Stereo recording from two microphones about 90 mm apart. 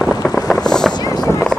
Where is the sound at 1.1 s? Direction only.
35° left (ahead or behind).